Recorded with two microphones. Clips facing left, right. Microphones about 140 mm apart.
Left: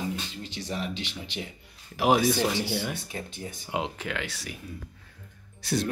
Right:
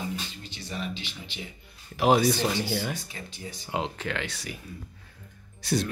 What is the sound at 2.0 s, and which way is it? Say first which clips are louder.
Speech: right 1 dB; 10° left (ahead or behind).